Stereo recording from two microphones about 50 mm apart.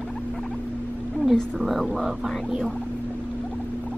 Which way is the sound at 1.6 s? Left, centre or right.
Centre.